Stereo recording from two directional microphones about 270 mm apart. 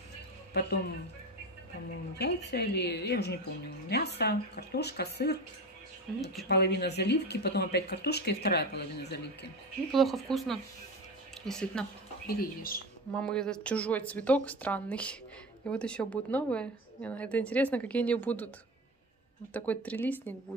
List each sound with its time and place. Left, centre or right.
0.5 s speech: left
2.1 s speech: left
6.5 s speech: left
9.8 s a woman's voice: centre
12.3 s speech: left
13.1 s a woman's voice: centre
19.5 s a woman's voice: centre